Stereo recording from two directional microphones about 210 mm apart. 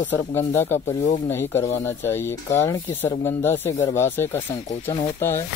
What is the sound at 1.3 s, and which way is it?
Speech, 10° left (ahead or behind).